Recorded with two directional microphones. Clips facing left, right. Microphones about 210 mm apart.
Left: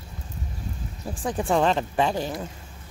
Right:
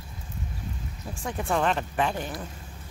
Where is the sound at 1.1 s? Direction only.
35° left (ahead or behind).